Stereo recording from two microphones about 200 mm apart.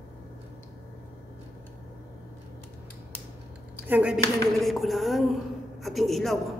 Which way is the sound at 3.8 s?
5° right (ahead or behind).